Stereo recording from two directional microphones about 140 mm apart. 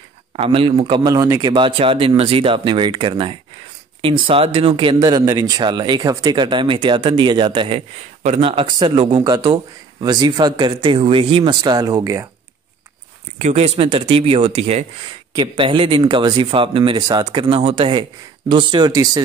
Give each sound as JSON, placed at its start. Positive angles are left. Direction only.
{"t": 0.4, "sound": "speech", "side_deg": -40}
{"t": 11.6, "sound": "speech", "side_deg": -30}
{"t": 13.4, "sound": "speech", "side_deg": -50}
{"t": 15.3, "sound": "speech", "side_deg": -35}